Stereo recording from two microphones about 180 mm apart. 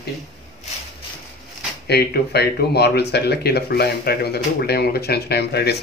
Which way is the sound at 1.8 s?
65° left (ahead or behind).